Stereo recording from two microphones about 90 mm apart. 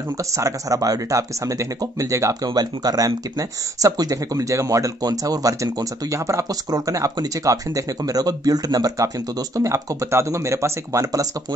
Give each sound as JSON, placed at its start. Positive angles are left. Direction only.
{"t": 0.2, "sound": "speech", "side_deg": -35}
{"t": 2.4, "sound": "speech", "side_deg": -45}